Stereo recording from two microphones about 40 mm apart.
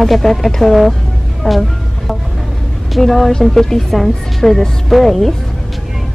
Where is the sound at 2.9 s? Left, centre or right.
Centre.